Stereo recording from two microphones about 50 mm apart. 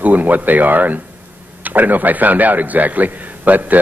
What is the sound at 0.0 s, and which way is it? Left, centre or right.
A man's voice, right.